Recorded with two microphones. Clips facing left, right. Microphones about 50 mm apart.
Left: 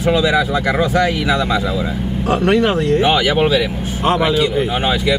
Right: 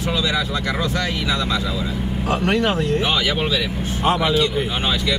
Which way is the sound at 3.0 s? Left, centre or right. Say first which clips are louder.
Left 7 dB; centre.